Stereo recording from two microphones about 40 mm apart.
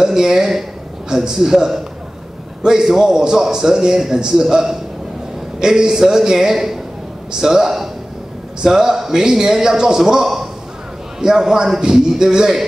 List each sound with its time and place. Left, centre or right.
0.0 s a man's voice: centre